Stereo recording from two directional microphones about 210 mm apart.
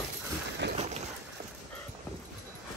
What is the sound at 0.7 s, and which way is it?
Rain, 30° right (ahead or behind).